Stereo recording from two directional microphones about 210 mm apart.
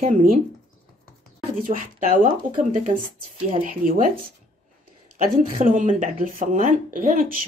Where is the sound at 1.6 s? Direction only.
40° right (ahead or behind).